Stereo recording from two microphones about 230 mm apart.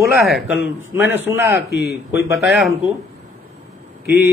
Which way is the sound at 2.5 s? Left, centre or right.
Centre.